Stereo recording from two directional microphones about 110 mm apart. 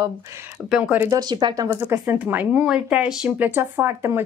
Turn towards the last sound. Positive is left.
turn(degrees=-20)  # may be behind; listen again after turning